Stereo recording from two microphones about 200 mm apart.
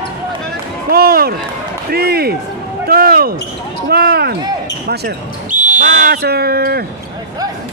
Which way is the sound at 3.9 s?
50° right (ahead or behind).